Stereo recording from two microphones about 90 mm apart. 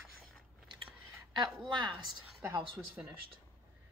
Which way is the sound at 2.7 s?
20° right (ahead or behind).